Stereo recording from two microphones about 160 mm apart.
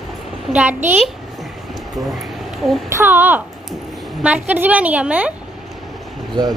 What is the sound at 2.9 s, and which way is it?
Speech, 15° right (ahead or behind).